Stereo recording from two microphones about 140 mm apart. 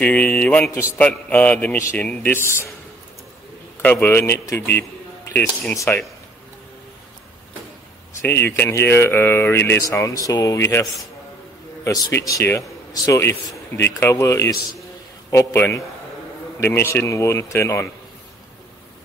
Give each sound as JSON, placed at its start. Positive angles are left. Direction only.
{"t": 0.0, "sound": "speech", "side_deg": 10}
{"t": 3.8, "sound": "speech", "side_deg": 15}
{"t": 8.3, "sound": "a man's voice", "side_deg": 15}